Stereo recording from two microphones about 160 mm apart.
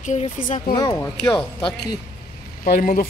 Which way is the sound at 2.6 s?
60° left (ahead or behind).